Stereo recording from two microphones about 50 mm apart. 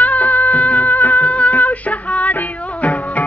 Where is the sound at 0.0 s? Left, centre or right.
Left.